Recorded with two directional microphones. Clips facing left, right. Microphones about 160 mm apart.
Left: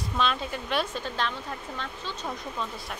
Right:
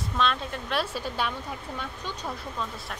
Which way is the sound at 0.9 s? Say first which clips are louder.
Right 1 dB; 10° right (ahead or behind).